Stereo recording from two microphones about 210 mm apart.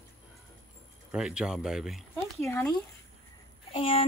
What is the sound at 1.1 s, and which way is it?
Speech, 5° right (ahead or behind).